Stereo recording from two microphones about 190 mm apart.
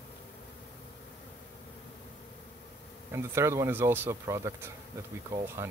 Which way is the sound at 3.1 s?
15° right (ahead or behind).